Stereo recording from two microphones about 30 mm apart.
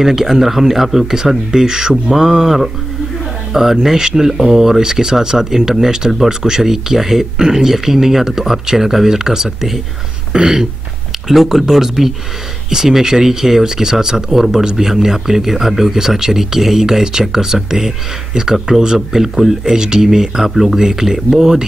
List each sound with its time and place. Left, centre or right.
0.0 s speech: centre
1.5 s speech: right
11.2 s speech: centre